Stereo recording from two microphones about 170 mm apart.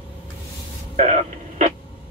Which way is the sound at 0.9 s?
45° right (ahead or behind).